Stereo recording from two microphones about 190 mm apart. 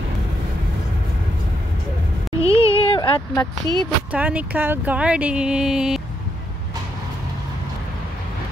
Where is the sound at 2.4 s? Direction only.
30° left (ahead or behind).